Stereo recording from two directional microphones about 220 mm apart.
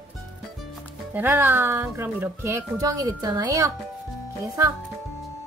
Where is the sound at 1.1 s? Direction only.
10° right (ahead or behind).